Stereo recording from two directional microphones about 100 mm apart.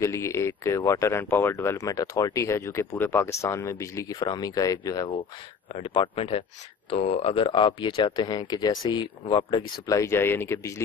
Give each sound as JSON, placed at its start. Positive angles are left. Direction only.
{"t": 0.0, "sound": "speech", "side_deg": 30}
{"t": 5.7, "sound": "speech", "side_deg": 65}
{"t": 6.9, "sound": "speech", "side_deg": 80}
{"t": 9.8, "sound": "speech", "side_deg": 30}